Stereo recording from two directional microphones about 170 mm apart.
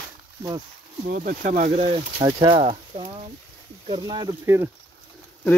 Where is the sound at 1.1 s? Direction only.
50° right (ahead or behind).